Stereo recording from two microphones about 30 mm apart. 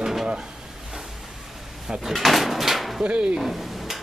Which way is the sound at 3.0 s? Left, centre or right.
Right.